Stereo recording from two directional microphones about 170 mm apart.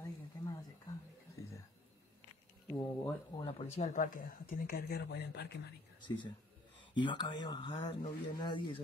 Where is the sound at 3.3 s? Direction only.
35° left (ahead or behind); by 5.5 s 75° left (ahead or behind).